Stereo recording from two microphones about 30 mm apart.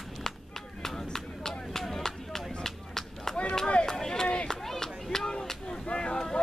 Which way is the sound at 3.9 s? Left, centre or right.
Centre.